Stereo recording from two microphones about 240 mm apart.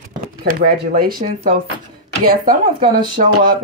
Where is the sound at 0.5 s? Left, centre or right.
Right.